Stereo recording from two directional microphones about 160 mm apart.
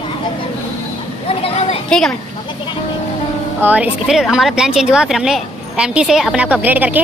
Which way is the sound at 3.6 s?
10° right (ahead or behind).